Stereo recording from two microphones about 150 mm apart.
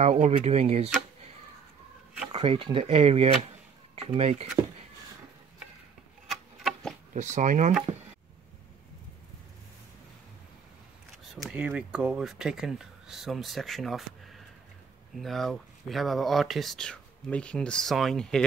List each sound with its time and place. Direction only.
0.0 s speech: 45° right (ahead or behind)
2.3 s speech: 40° right (ahead or behind)
6.2 s a sound: centre (ahead or behind)
7.2 s speech: 55° right (ahead or behind)
11.2 s speech: centre (ahead or behind)